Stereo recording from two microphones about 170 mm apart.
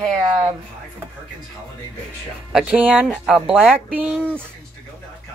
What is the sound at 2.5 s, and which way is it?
Speech, 10° right (ahead or behind).